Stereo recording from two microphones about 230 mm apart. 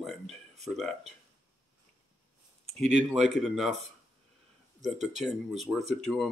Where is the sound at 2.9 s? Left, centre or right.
Centre.